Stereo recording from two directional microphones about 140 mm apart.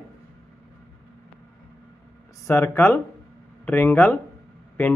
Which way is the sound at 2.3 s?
20° left (ahead or behind).